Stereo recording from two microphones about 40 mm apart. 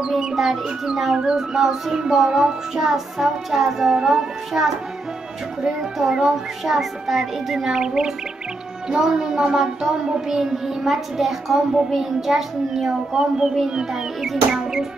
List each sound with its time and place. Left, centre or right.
0.0 s speech: centre
5.8 s speech: centre
6.7 s speech: centre
13.7 s music: centre
14.5 s speech: centre